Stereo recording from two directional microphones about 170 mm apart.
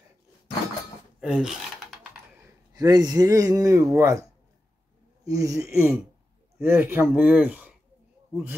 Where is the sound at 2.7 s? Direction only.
25° right (ahead or behind).